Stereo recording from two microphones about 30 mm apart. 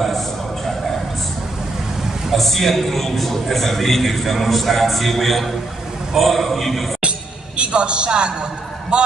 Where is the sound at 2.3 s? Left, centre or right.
Centre.